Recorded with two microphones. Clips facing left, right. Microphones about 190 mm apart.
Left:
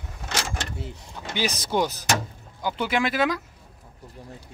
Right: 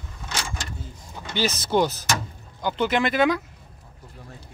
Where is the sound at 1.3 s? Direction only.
10° left (ahead or behind).